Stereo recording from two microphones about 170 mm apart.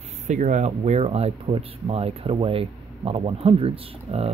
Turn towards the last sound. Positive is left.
turn(degrees=-35)  # may be behind; listen again after turning